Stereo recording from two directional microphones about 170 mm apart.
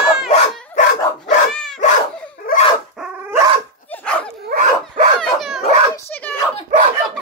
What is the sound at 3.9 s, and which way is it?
Dog, 5° left (ahead or behind).